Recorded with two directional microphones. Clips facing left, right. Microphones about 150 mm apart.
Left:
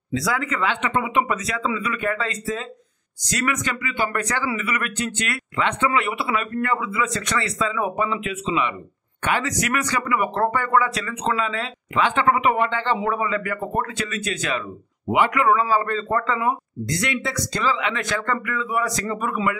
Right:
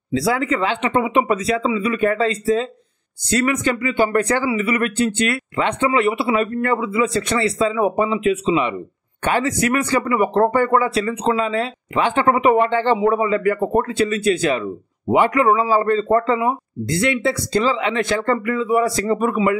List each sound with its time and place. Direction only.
0.1 s speech: 30° right (ahead or behind)